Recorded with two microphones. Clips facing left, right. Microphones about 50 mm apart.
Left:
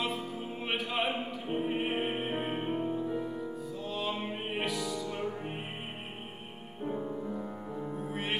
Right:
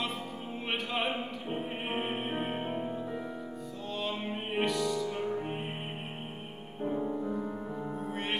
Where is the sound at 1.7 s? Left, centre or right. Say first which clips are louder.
Left 2 dB; centre.